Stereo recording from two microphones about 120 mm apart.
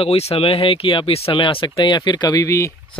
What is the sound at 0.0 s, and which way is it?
Speech, 55° left (ahead or behind).